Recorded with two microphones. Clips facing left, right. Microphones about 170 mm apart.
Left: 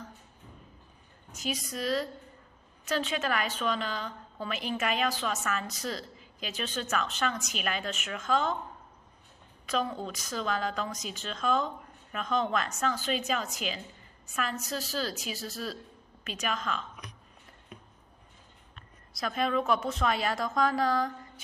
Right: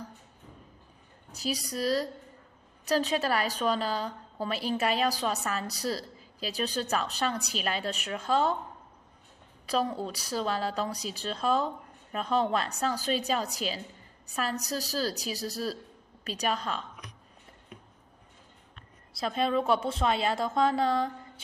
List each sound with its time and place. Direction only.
1.3 s a woman's voice: 35° right (ahead or behind)
9.7 s a woman's voice: 35° right (ahead or behind)
19.1 s a woman's voice: 30° right (ahead or behind)